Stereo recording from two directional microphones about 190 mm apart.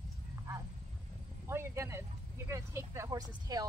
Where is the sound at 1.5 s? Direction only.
15° right (ahead or behind).